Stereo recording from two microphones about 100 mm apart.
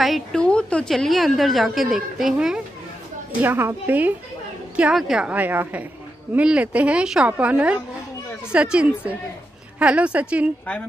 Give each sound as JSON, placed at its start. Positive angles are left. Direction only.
{"t": 0.0, "sound": "a woman's voice", "side_deg": 0}
{"t": 3.4, "sound": "a woman's voice", "side_deg": -20}
{"t": 4.9, "sound": "a woman's voice", "side_deg": 0}
{"t": 5.2, "sound": "a woman's voice", "side_deg": -15}